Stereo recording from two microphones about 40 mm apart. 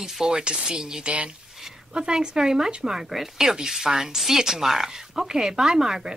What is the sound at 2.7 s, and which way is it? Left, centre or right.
Speech, right.